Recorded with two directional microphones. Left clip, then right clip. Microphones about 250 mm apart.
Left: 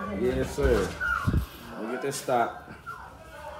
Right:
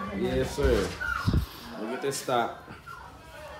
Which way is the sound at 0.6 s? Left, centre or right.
Centre.